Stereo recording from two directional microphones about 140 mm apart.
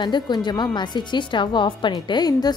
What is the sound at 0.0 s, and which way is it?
A woman's voice, 30° left (ahead or behind).